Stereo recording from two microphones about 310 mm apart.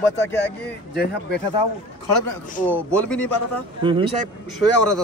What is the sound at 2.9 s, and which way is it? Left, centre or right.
Speech, centre.